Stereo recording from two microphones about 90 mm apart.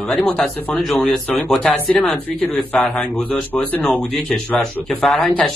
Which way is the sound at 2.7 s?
15° left (ahead or behind).